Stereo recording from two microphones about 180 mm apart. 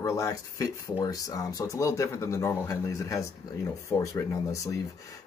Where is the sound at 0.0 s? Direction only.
15° left (ahead or behind).